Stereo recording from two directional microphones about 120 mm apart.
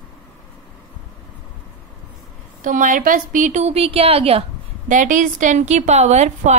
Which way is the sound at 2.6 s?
90° right.